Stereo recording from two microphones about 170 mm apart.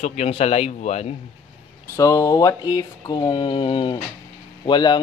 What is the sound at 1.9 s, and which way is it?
Mantra, 20° left (ahead or behind).